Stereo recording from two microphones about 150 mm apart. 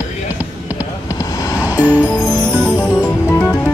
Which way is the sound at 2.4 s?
5° left (ahead or behind).